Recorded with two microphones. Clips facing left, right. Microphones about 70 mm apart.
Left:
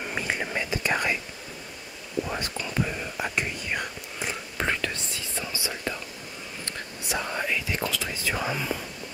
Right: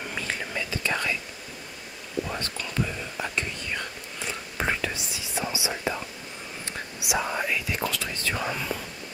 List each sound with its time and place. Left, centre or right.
0.0 s whispering: centre
2.2 s whispering: centre
4.6 s whispering: centre